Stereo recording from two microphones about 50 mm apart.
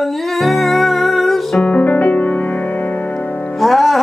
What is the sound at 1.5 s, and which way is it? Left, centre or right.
Music, left.